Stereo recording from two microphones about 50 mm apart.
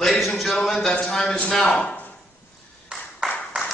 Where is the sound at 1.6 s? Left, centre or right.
Left.